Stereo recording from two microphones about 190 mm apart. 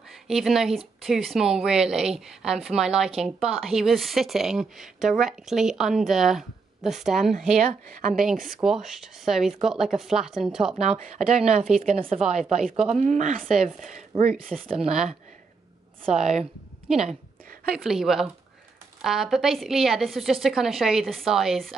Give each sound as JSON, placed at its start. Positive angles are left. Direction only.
{"t": 0.3, "sound": "a woman's voice", "side_deg": 0}
{"t": 7.5, "sound": "speech", "side_deg": -45}
{"t": 8.6, "sound": "a woman's voice", "side_deg": 0}
{"t": 10.8, "sound": "speech", "side_deg": -35}
{"t": 14.3, "sound": "a woman's voice", "side_deg": 0}
{"t": 17.7, "sound": "a woman's voice", "side_deg": 0}